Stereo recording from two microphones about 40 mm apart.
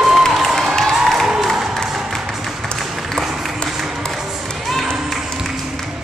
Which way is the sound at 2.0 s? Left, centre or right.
Centre.